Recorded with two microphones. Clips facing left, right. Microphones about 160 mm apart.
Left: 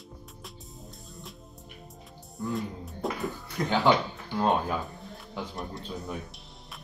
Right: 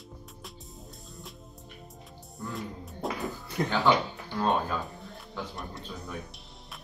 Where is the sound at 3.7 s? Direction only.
20° left (ahead or behind).